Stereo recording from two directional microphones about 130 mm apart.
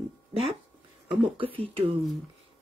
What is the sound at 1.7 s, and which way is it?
Speech, 45° right (ahead or behind).